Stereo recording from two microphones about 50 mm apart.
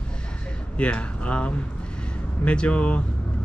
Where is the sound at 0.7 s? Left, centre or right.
Left.